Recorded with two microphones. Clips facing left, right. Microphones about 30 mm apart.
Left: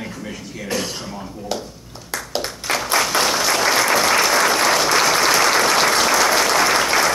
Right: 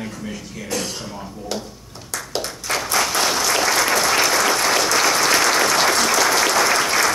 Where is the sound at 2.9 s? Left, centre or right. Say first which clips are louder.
Left 2 dB; centre.